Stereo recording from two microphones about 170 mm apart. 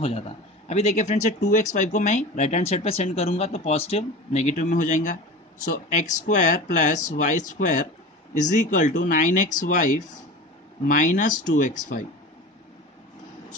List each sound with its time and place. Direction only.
0.7 s speech: 40° left (ahead or behind)